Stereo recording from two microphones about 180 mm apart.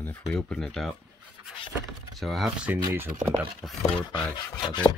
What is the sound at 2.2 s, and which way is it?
Speech, centre (ahead or behind).